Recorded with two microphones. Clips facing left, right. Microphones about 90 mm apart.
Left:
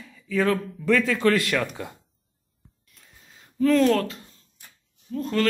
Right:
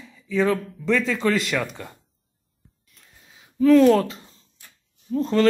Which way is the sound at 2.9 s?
Centre (ahead or behind).